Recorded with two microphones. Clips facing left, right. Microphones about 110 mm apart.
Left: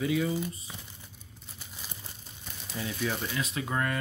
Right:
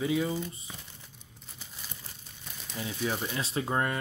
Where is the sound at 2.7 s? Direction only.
20° right (ahead or behind).